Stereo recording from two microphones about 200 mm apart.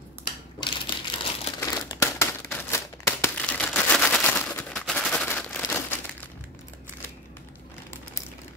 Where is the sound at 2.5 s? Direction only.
10° left (ahead or behind).